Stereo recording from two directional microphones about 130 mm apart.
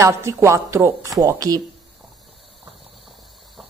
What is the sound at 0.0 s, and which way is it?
Speech, 20° right (ahead or behind).